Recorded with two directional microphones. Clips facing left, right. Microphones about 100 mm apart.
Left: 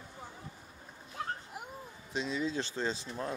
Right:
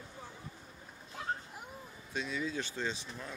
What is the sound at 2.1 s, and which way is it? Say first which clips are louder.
Speech: left 3 dB; 30° left (ahead or behind).